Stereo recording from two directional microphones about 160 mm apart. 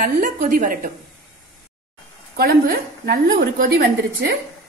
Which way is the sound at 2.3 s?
70° right (ahead or behind).